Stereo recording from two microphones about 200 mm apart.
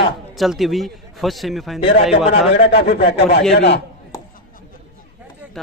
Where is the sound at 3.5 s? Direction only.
60° left (ahead or behind).